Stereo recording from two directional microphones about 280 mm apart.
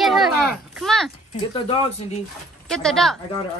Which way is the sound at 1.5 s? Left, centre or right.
Centre.